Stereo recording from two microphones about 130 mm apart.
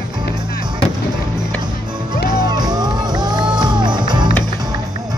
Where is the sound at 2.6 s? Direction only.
30° right (ahead or behind).